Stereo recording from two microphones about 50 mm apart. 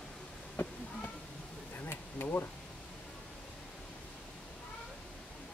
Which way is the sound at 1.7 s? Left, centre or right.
Left.